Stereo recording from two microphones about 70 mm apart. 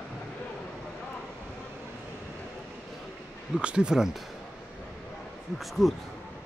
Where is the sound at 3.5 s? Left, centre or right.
Centre.